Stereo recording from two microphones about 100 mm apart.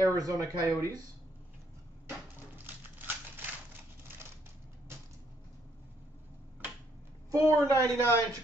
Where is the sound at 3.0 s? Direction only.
20° right (ahead or behind).